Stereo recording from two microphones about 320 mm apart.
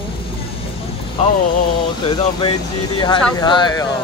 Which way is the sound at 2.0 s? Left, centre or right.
Centre.